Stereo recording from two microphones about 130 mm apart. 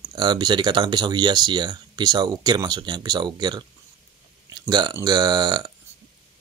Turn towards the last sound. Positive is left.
turn(degrees=-30)  # may be behind; listen again after turning